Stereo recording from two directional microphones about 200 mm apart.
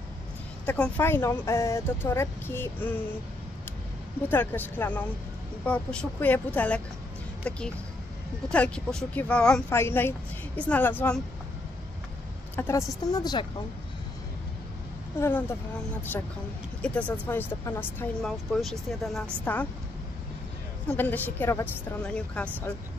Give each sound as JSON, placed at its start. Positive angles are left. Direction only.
{"t": 0.7, "sound": "speech", "side_deg": 5}
{"t": 4.3, "sound": "speech", "side_deg": 10}
{"t": 12.5, "sound": "a woman's voice", "side_deg": 15}
{"t": 15.1, "sound": "speech", "side_deg": 10}
{"t": 20.9, "sound": "speech", "side_deg": 10}